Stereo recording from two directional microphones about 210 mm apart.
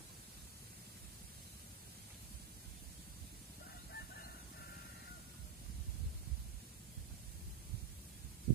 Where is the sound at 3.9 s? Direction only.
50° left (ahead or behind).